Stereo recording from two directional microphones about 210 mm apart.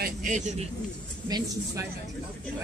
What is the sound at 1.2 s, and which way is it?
Speech, 20° right (ahead or behind).